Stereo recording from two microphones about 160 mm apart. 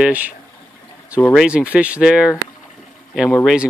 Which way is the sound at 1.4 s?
5° right (ahead or behind).